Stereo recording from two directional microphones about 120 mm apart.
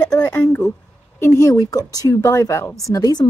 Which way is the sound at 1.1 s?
25° left (ahead or behind).